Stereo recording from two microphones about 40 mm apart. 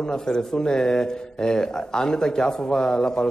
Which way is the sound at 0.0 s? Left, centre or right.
Centre.